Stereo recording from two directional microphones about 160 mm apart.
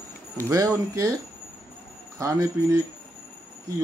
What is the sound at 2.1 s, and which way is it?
Speech, 20° right (ahead or behind).